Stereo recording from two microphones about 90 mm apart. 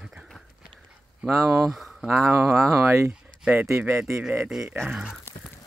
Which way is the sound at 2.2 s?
30° right (ahead or behind).